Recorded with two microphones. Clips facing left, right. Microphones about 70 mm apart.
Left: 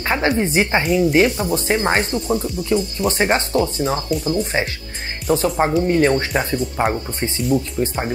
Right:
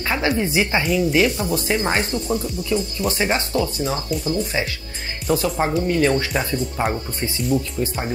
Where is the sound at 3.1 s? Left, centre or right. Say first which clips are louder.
Left 4 dB; left.